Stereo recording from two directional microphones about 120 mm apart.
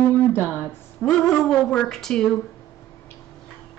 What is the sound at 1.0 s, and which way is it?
A woman's voice, 5° left (ahead or behind).